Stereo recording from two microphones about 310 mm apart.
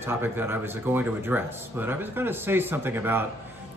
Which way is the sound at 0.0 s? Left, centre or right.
Centre.